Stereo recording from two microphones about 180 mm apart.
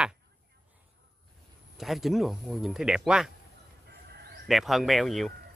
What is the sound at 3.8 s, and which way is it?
Chicken, 65° right (ahead or behind).